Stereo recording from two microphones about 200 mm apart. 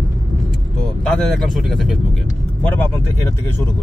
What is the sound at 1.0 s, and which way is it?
Speech, centre (ahead or behind).